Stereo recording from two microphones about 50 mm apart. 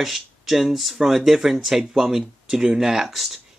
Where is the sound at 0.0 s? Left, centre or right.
Centre.